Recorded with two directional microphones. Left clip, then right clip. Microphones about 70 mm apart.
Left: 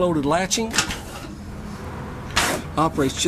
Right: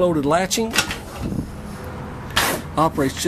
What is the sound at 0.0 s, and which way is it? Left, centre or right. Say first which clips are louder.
Speech: right 2 dB; centre.